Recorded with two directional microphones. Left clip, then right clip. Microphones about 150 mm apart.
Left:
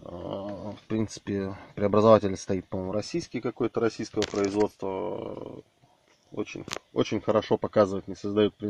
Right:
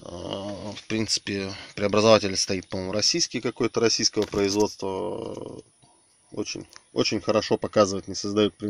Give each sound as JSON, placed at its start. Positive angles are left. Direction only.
{"t": 0.1, "sound": "a sound", "side_deg": -20}
{"t": 0.7, "sound": "a sound", "side_deg": -5}
{"t": 1.0, "sound": "speech", "side_deg": 10}
{"t": 2.4, "sound": "speech", "side_deg": -5}
{"t": 3.5, "sound": "speech", "side_deg": -35}
{"t": 7.0, "sound": "speech", "side_deg": -15}